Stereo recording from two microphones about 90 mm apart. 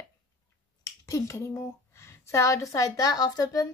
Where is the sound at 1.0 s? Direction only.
35° left (ahead or behind).